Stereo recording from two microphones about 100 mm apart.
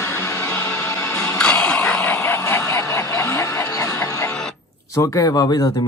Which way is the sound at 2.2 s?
30° left (ahead or behind).